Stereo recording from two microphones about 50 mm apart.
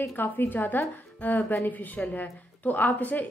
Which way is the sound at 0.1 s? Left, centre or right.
Left.